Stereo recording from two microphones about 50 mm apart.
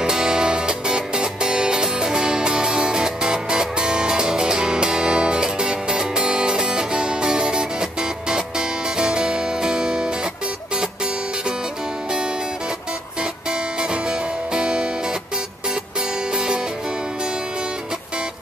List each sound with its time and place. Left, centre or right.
0.0 s music: centre
13.2 s music: centre
16.3 s music: centre